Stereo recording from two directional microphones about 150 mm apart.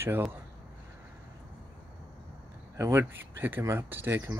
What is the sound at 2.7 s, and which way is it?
Speech, 15° right (ahead or behind).